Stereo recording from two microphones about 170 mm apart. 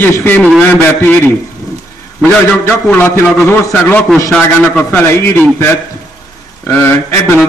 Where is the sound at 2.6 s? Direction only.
10° left (ahead or behind).